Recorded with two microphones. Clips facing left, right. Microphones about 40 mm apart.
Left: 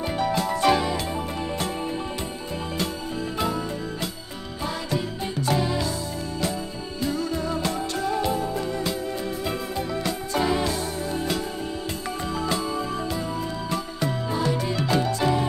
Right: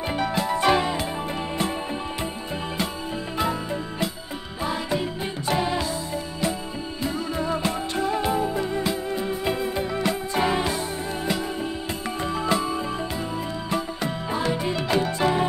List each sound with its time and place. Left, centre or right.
0.2 s music: centre
5.5 s music: right
7.0 s music: centre
12.4 s music: centre